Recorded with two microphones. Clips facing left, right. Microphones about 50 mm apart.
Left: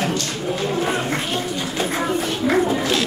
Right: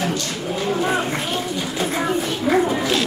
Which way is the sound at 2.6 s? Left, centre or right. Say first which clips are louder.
Even; centre.